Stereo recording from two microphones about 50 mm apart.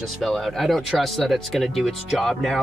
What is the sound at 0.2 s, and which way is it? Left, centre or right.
Speech, centre.